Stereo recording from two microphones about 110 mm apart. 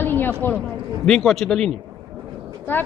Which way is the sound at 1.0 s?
5° left (ahead or behind).